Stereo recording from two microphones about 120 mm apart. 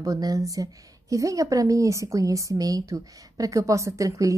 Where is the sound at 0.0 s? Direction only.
30° right (ahead or behind).